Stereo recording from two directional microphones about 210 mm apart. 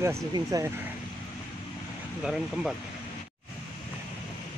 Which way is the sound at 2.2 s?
Centre (ahead or behind).